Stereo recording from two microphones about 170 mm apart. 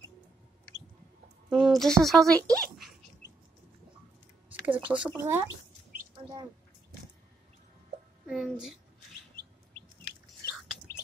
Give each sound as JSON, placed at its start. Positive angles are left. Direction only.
{"t": 1.5, "sound": "a sound", "side_deg": 0}
{"t": 2.0, "sound": "a child's voice", "side_deg": 0}
{"t": 4.6, "sound": "speech", "side_deg": -10}
{"t": 8.3, "sound": "speech", "side_deg": 0}